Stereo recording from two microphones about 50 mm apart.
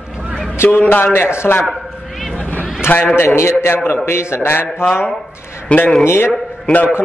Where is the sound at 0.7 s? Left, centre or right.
Left.